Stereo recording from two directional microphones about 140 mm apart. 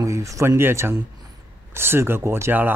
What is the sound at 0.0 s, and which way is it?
Speech, 20° right (ahead or behind).